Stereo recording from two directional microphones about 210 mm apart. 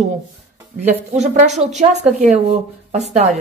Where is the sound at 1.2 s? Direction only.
35° right (ahead or behind).